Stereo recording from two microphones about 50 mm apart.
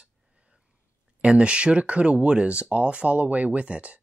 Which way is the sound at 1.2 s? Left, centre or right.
Right.